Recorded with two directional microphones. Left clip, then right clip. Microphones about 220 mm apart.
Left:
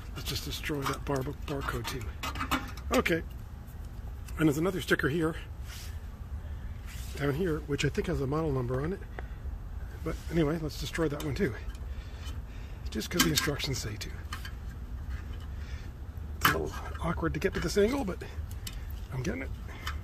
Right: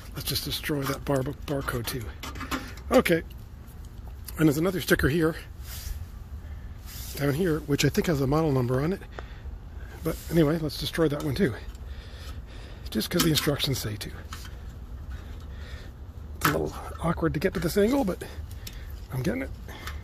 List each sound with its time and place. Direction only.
0.1 s speech: 40° right (ahead or behind)
2.2 s a sound: centre (ahead or behind)
2.6 s a sound: 40° right (ahead or behind)
4.4 s speech: 40° right (ahead or behind)
7.2 s speech: 45° right (ahead or behind)
10.0 s speech: 45° right (ahead or behind)
12.9 s speech: 40° right (ahead or behind)
16.3 s speech: 35° right (ahead or behind)